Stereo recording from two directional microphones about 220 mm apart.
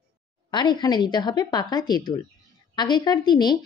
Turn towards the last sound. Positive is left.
turn(degrees=20)  # may be behind; listen again after turning